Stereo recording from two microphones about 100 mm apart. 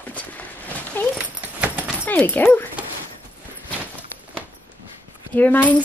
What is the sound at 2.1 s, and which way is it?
Speech, 20° left (ahead or behind).